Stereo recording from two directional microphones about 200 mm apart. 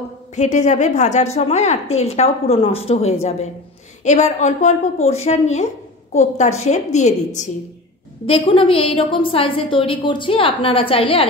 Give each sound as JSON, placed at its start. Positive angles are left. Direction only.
{"t": 0.4, "sound": "a woman's voice", "side_deg": 35}